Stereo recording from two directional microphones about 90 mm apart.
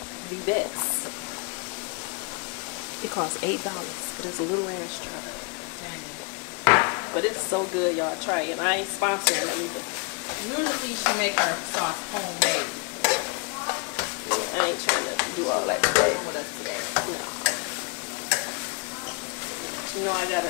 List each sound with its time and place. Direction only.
0.5 s speech: 15° left (ahead or behind)
3.4 s speech: 15° left (ahead or behind)
6.6 s chopping: 20° left (ahead or behind)
7.5 s speech: 25° left (ahead or behind)
12.4 s stir: 15° left (ahead or behind)
15.4 s a sound: 30° left (ahead or behind)
20.1 s speech: 20° left (ahead or behind)